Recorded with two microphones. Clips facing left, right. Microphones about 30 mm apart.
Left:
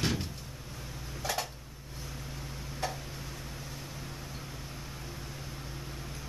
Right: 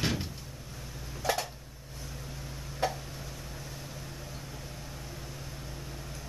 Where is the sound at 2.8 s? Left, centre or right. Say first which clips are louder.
Right 5 dB; centre.